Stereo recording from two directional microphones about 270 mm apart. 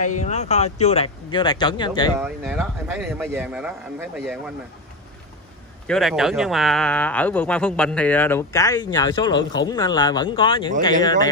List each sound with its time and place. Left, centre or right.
0.2 s speech: left
2.1 s speech: centre
5.9 s speech: centre